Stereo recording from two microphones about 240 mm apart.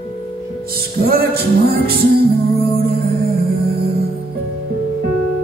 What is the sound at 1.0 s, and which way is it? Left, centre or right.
Music, right.